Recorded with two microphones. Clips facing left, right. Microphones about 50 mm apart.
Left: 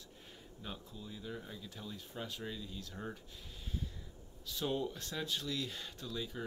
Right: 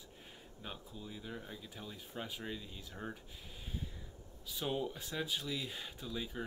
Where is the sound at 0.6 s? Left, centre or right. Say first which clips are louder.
Even; centre.